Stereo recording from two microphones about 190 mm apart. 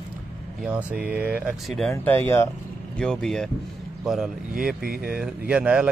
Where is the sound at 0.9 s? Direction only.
55° right (ahead or behind).